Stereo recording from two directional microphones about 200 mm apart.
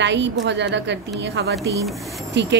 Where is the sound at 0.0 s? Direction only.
60° right (ahead or behind).